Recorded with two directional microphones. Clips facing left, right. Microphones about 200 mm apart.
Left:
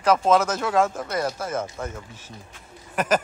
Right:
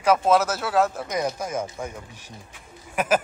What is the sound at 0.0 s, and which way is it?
Speech, 10° right (ahead or behind).